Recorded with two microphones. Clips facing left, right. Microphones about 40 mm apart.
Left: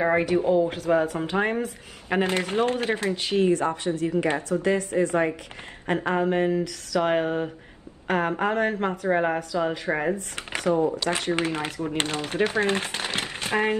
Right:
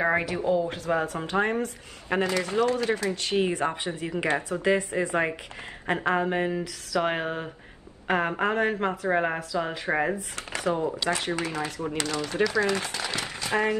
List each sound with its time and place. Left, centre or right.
0.0 s a woman's voice: centre
0.3 s speech: left
0.9 s a woman's voice: centre
2.2 s speech: left
3.3 s speech: right
5.9 s a woman's voice: centre
11.3 s speech: left